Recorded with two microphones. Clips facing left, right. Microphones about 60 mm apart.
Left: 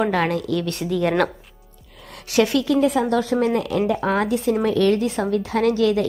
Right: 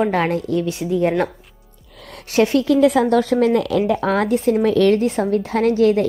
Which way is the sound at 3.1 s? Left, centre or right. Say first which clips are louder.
Right 4 dB; right.